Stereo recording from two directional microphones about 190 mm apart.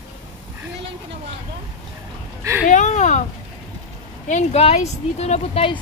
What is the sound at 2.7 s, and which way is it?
Speech, 40° left (ahead or behind).